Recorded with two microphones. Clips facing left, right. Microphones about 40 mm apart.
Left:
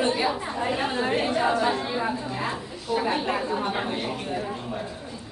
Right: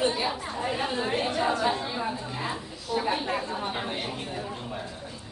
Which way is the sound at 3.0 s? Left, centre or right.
Centre.